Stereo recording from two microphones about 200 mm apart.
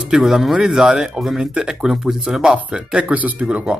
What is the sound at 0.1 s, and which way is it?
Speech, centre (ahead or behind).